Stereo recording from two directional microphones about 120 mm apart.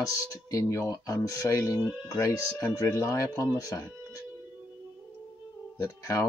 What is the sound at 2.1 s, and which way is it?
Speech, 25° left (ahead or behind).